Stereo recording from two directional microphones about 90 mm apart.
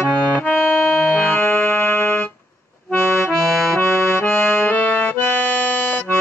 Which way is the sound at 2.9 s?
25° left (ahead or behind).